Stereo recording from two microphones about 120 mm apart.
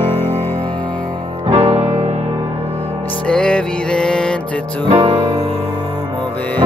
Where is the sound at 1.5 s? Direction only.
60° right (ahead or behind).